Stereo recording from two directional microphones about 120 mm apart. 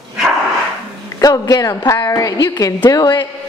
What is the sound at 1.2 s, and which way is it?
A woman's voice, 30° left (ahead or behind).